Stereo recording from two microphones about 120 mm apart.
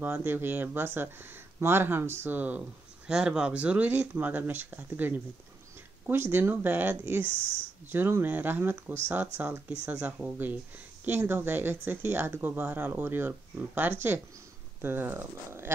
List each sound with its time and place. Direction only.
0.0 s speech: 15° right (ahead or behind)